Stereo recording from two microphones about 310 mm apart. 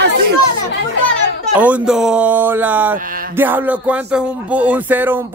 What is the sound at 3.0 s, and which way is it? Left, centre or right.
Speech, right.